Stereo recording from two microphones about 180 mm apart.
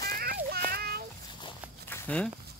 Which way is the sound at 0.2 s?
60° right (ahead or behind).